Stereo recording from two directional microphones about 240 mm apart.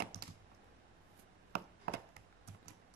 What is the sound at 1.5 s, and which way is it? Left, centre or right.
Chopping, right.